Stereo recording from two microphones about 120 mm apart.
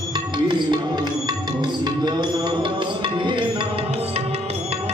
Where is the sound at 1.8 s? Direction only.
35° right (ahead or behind).